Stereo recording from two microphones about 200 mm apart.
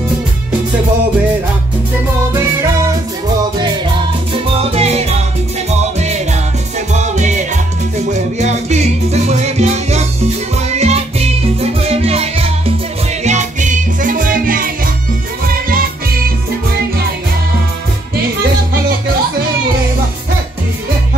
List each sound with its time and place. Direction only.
4.5 s music: 30° right (ahead or behind)
6.9 s music: 35° right (ahead or behind)